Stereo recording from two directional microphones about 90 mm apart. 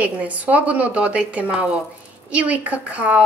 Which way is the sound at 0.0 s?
15° right (ahead or behind).